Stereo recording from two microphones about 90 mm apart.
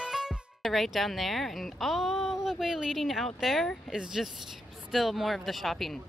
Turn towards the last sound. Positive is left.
turn(degrees=0)  # may be behind; listen again after turning